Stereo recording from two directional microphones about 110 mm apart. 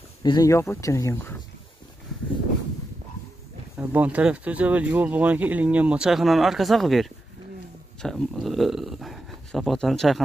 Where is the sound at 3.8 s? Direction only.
15° right (ahead or behind).